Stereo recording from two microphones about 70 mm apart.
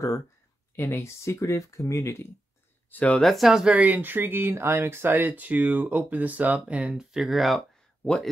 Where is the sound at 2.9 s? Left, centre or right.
Centre.